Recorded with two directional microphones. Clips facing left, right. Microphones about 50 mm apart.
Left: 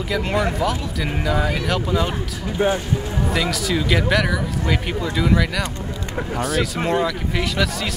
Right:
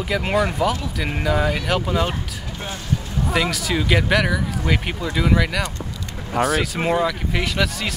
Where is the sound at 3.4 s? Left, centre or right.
Centre.